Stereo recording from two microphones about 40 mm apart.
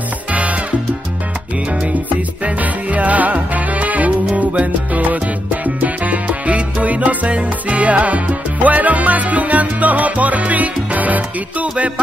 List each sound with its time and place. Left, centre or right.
0.3 s music: right
2.4 s music: right
7.3 s salsa music: right